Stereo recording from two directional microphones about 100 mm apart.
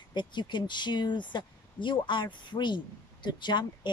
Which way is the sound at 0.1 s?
50° left (ahead or behind).